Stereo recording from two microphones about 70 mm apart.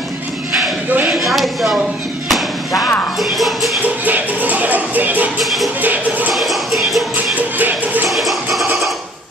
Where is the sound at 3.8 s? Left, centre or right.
Right.